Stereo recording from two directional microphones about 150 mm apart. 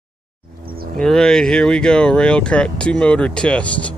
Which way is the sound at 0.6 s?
80° right.